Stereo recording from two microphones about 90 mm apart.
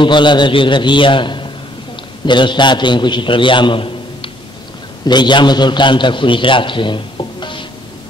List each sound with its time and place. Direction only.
0.0 s a man's voice: 60° left (ahead or behind)
5.0 s a man's voice: 55° left (ahead or behind)